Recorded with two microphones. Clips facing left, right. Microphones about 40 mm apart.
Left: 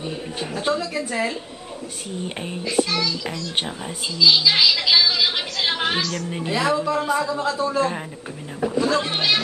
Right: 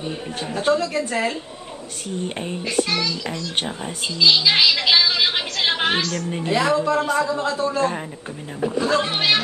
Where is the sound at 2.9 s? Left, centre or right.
Centre.